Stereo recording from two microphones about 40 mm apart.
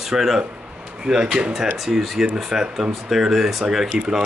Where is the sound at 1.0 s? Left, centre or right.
Right.